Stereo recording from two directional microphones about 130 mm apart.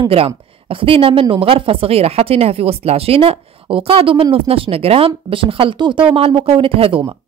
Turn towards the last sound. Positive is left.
turn(degrees=-45)  # may be behind; listen again after turning